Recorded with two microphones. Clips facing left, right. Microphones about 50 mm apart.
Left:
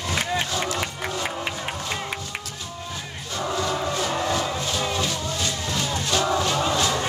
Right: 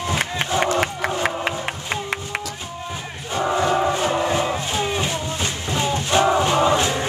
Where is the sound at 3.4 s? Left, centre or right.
Right.